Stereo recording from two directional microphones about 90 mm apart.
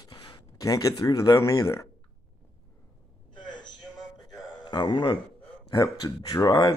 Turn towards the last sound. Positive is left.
turn(degrees=50)  # may be behind; listen again after turning